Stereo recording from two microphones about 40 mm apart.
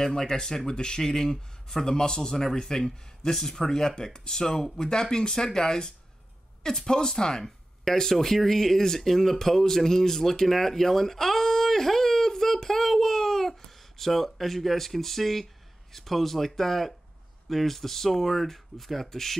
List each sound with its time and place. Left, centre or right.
0.0 s speech: centre